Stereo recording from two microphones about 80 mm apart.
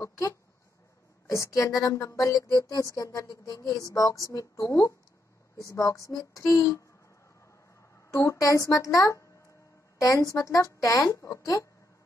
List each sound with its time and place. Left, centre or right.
1.3 s speech: left
8.1 s a woman's voice: left